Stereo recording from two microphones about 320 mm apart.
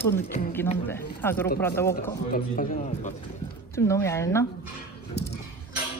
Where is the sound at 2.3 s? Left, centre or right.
Left.